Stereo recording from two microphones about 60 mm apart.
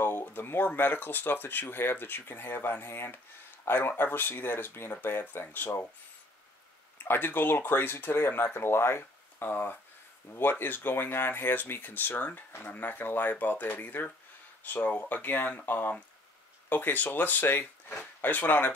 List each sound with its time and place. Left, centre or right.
0.0 s speech: left
7.0 s speech: left